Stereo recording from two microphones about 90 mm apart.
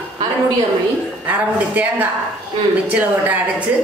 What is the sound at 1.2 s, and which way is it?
A woman's voice, 20° right (ahead or behind).